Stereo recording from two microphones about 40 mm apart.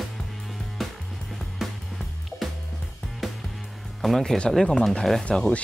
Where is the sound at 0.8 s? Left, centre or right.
Centre.